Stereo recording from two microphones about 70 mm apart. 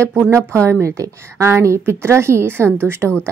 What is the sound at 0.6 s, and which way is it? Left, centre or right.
A woman's voice, right.